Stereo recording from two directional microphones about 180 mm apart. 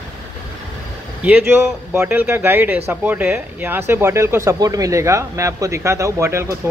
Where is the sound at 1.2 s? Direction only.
5° right (ahead or behind).